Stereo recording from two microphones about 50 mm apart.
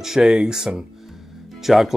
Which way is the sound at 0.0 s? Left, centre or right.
Centre.